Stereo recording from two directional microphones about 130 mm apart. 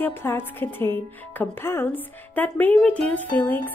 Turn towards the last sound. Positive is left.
turn(degrees=15)  # may be behind; listen again after turning